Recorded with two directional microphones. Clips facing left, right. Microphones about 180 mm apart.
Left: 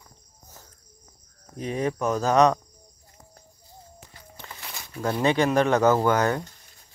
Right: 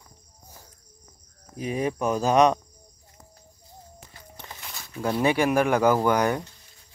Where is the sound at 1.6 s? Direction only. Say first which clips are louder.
Even; 15° right (ahead or behind).